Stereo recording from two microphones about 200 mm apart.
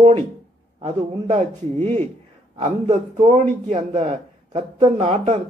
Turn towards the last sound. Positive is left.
turn(degrees=-35)  # may be behind; listen again after turning